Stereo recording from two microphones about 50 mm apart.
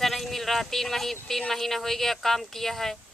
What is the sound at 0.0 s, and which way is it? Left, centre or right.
Speech, centre.